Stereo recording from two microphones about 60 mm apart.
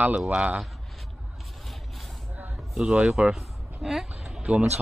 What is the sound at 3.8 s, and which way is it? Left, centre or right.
Speech, centre.